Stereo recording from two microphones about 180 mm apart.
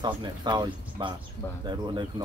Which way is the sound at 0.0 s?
25° right (ahead or behind).